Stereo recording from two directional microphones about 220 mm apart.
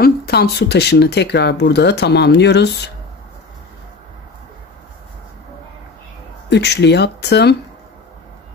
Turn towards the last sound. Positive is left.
turn(degrees=50)  # may be behind; listen again after turning